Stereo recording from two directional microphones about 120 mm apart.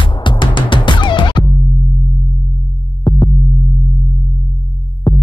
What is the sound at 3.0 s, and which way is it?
Music, 40° left (ahead or behind).